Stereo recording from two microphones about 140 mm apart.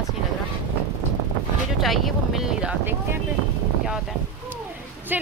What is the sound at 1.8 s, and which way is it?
Speech, centre (ahead or behind).